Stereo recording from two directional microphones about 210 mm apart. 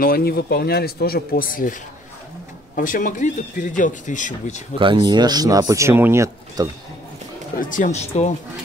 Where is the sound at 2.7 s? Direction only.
40° left (ahead or behind).